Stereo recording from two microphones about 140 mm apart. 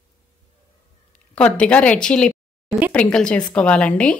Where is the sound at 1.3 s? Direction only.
5° left (ahead or behind).